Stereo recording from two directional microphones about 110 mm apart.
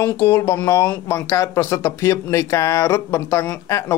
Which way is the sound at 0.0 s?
25° left (ahead or behind).